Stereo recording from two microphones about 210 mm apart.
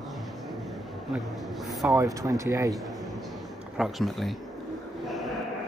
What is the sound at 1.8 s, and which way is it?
Speech, 15° right (ahead or behind).